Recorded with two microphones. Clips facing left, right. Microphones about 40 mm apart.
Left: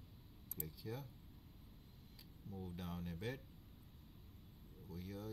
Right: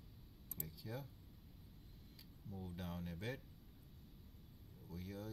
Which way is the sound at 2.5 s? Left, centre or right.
Centre.